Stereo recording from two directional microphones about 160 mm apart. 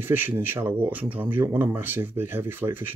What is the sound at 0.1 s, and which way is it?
Speech, 10° right (ahead or behind).